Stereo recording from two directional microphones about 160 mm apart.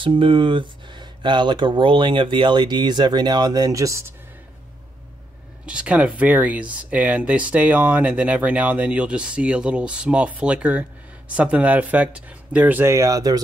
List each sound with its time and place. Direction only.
0.0 s speech: 35° right (ahead or behind)
5.7 s speech: 5° right (ahead or behind)